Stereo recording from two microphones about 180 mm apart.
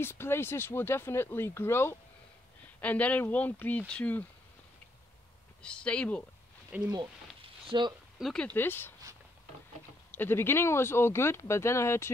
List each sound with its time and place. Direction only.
0.0 s speech: 15° left (ahead or behind)
5.6 s speech: 5° left (ahead or behind)
6.7 s speech: 10° right (ahead or behind)
7.7 s speech: 25° right (ahead or behind)
8.2 s speech: 5° left (ahead or behind)
10.1 s speech: 10° left (ahead or behind)